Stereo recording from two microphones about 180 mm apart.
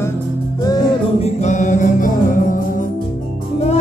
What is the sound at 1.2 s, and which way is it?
Music, 40° left (ahead or behind).